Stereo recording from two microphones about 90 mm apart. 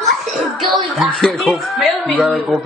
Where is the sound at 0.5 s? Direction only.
Centre (ahead or behind).